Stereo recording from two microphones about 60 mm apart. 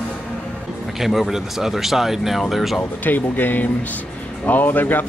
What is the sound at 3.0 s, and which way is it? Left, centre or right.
Speech, left.